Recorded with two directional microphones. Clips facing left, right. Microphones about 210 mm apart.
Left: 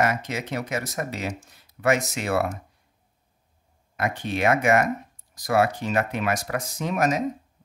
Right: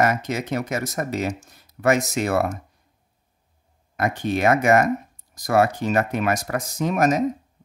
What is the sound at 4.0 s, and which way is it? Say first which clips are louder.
Speech: right 3 dB; 40° right (ahead or behind).